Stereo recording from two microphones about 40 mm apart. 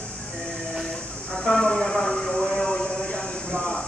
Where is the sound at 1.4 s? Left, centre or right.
Centre.